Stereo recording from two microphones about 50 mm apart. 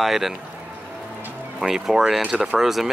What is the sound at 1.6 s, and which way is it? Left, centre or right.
Speech, centre.